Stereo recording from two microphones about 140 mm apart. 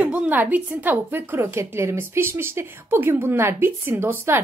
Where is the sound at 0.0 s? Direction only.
10° right (ahead or behind).